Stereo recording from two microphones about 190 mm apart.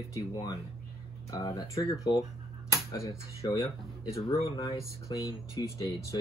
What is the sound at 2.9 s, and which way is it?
Speech, 15° left (ahead or behind).